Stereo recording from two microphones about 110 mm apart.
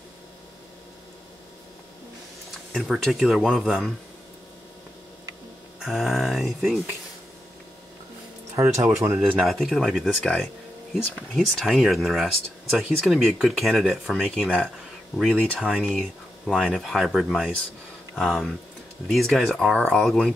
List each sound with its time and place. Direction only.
2.7 s speech: 5° right (ahead or behind)
5.8 s speech: centre (ahead or behind)
8.7 s speech: 30° right (ahead or behind)
9.5 s speech: centre (ahead or behind)